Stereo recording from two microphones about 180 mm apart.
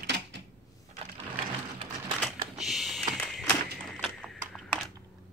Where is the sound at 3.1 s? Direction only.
5° left (ahead or behind).